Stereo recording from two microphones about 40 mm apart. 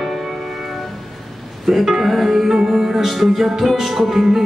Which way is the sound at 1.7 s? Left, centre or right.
Centre.